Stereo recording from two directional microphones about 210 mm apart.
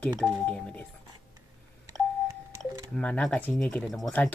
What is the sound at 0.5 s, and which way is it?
Speech, 5° left (ahead or behind).